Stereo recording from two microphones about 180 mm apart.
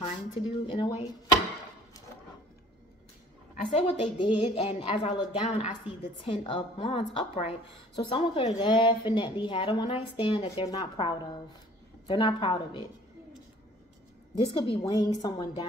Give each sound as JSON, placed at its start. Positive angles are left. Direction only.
{"t": 0.0, "sound": "a woman's voice", "side_deg": 30}
{"t": 3.7, "sound": "a woman's voice", "side_deg": 30}
{"t": 14.4, "sound": "a woman's voice", "side_deg": 30}